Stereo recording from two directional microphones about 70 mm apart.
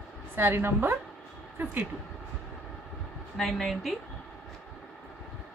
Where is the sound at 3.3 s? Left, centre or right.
Centre.